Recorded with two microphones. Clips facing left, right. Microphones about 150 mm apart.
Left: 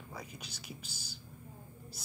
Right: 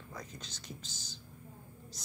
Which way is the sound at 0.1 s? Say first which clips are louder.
Even; 10° left (ahead or behind).